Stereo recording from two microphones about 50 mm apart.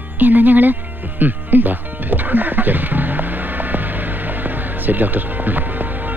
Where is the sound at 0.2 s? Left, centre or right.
Right.